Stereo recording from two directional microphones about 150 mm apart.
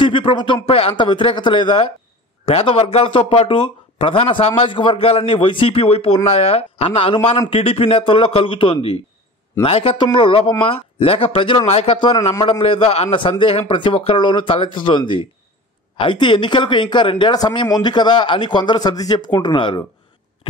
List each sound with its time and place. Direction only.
0.0 s speech: 35° left (ahead or behind)